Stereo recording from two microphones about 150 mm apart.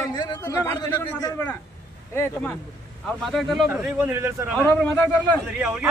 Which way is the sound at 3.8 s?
10° right (ahead or behind).